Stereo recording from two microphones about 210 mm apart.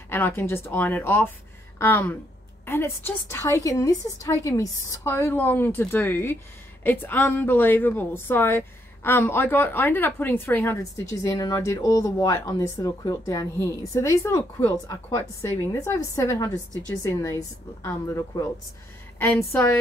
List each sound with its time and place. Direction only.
0.1 s a woman's voice: 10° left (ahead or behind)